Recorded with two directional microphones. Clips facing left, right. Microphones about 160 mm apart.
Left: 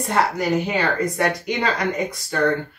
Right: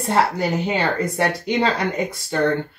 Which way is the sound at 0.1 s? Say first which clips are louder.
Right 1 dB; 30° right (ahead or behind).